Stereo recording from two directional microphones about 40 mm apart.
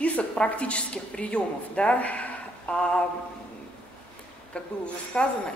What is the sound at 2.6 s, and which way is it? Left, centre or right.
Speech, left.